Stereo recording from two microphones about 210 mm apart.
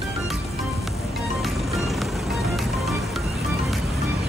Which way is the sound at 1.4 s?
Centre (ahead or behind).